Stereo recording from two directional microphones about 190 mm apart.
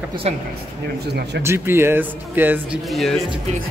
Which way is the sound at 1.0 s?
60° right (ahead or behind).